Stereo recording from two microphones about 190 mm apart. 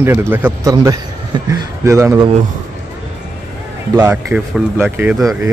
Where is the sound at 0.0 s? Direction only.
10° right (ahead or behind).